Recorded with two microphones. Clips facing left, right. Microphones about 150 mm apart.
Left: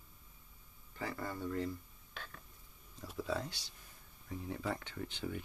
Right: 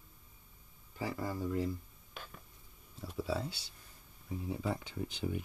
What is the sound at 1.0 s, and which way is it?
Speech, 10° right (ahead or behind).